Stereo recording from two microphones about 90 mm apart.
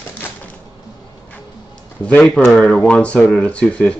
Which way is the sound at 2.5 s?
10° left (ahead or behind).